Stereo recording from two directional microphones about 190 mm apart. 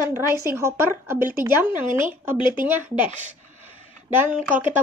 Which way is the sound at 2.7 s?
10° right (ahead or behind).